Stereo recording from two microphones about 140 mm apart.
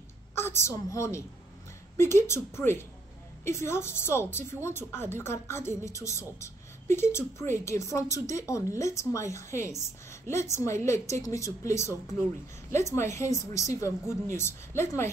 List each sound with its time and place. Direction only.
0.3 s a woman's voice: 15° left (ahead or behind)